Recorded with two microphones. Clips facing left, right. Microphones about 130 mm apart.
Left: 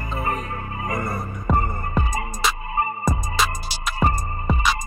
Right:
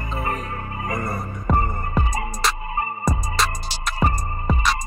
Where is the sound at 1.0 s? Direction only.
Centre (ahead or behind).